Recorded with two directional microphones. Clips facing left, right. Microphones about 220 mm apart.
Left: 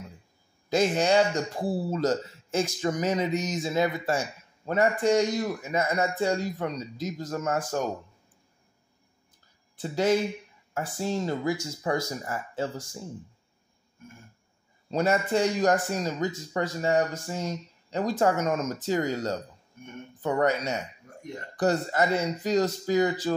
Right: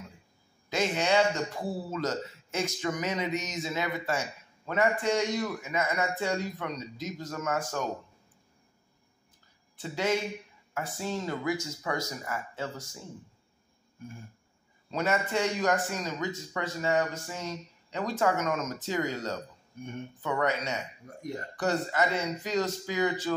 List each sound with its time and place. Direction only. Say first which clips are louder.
0.7 s a man's voice: left 5 dB; 35° left (ahead or behind)
9.8 s a man's voice: left 5 dB; 35° left (ahead or behind)
14.9 s a man's voice: left 5 dB; 35° left (ahead or behind)
21.0 s speech: right 2 dB; 35° right (ahead or behind)
21.5 s a man's voice: left 4 dB; 35° left (ahead or behind)